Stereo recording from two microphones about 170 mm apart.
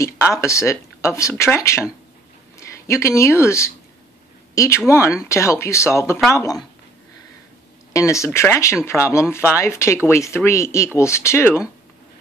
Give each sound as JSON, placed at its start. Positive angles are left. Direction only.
{"t": 0.0, "sound": "a woman's voice", "side_deg": 20}
{"t": 7.9, "sound": "speech", "side_deg": 15}